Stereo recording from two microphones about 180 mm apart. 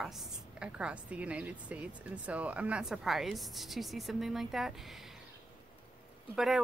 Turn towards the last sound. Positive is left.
turn(degrees=0)  # may be behind; listen again after turning